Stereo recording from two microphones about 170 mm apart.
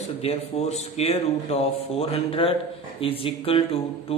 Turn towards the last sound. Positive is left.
turn(degrees=35)  # may be behind; listen again after turning